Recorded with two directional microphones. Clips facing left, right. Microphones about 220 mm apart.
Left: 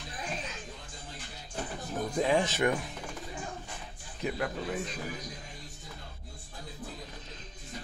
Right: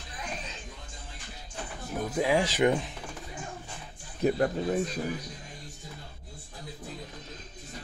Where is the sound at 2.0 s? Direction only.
5° right (ahead or behind).